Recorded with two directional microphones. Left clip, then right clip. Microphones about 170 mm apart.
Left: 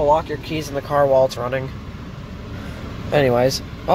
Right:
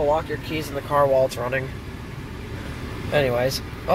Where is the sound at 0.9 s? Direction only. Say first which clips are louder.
Left 3 dB; 15° left (ahead or behind).